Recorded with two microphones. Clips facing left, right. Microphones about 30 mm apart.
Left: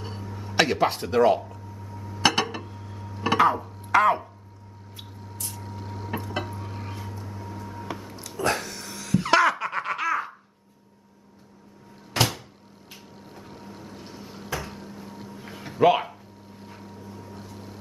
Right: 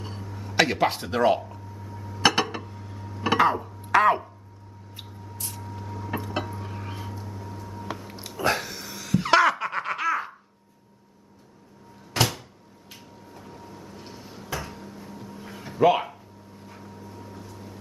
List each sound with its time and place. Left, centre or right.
0.0 s a sound: centre
5.6 s vehicle: left
6.9 s vehicle: centre
7.2 s a sound: centre
8.4 s laughter: centre
12.1 s cupboard open or close: centre
13.5 s boat: left
13.9 s a sound: centre
15.3 s music: centre